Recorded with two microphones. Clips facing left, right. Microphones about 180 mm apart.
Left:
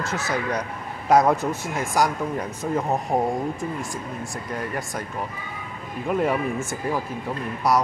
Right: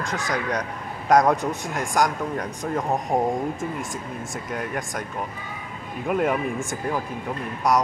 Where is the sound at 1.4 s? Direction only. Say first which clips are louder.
Left 1 dB; 15° right (ahead or behind).